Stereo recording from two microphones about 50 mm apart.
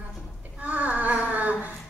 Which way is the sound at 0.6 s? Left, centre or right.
Right.